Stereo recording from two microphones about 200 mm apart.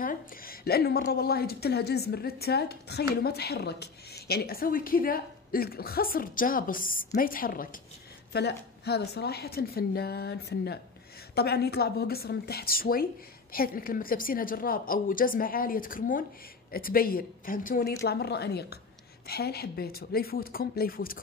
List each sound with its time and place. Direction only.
0.0 s a woman's voice: 45° left (ahead or behind)
8.3 s a woman's voice: 55° left (ahead or behind)